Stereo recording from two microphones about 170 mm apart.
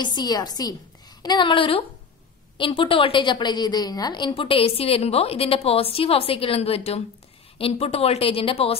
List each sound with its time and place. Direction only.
0.0 s a woman's voice: 25° left (ahead or behind)